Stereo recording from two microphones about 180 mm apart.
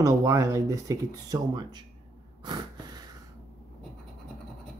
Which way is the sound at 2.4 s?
25° right (ahead or behind).